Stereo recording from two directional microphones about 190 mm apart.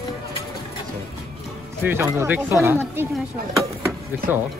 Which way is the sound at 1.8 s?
10° right (ahead or behind).